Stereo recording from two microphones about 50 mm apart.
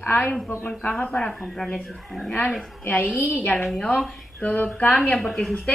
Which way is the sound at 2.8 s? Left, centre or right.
Left.